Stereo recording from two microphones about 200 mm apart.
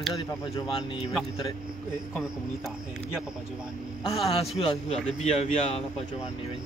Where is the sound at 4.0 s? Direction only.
30° left (ahead or behind).